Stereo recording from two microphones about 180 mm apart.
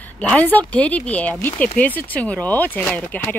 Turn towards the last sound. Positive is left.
turn(degrees=10)  # may be behind; listen again after turning